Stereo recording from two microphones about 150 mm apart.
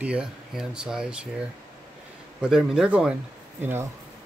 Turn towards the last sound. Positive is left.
turn(degrees=-15)  # may be behind; listen again after turning